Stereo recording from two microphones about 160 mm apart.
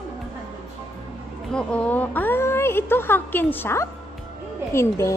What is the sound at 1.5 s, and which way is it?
Speech, 10° left (ahead or behind).